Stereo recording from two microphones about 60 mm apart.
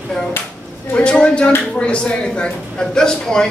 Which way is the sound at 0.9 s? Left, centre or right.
Centre.